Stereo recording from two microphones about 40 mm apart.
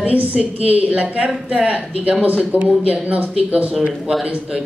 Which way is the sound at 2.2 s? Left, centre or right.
Right.